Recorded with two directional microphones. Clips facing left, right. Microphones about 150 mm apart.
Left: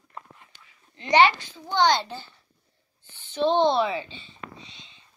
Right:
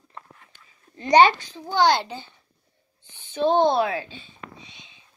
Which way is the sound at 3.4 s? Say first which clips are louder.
Right 2 dB; 45° right (ahead or behind).